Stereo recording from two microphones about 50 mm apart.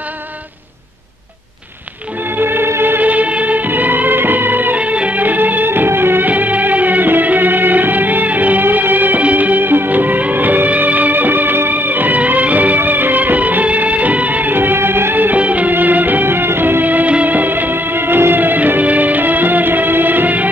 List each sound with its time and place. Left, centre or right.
2.3 s music: right
3.0 s music: right
4.7 s music: right
15.1 s music: right